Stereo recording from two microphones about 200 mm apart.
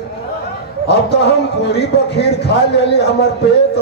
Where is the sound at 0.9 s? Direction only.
55° left (ahead or behind).